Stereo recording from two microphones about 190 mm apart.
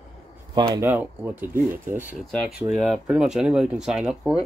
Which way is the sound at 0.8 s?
10° right (ahead or behind).